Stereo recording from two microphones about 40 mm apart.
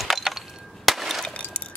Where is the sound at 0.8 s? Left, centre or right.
Centre.